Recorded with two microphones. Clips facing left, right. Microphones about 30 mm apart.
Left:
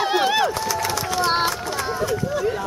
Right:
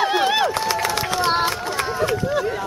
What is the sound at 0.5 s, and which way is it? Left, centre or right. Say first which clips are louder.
Run: right 2 dB; right.